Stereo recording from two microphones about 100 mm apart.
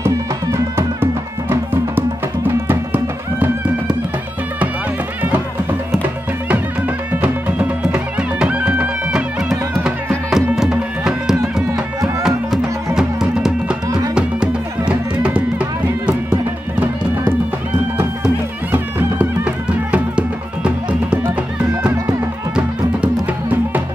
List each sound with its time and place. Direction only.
0.0 s music: 25° right (ahead or behind)
5.2 s music: 20° right (ahead or behind)
7.2 s music: 15° right (ahead or behind)
17.9 s music: 15° right (ahead or behind)